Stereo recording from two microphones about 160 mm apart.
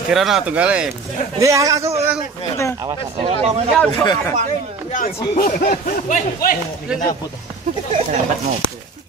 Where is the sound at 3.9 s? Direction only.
25° left (ahead or behind).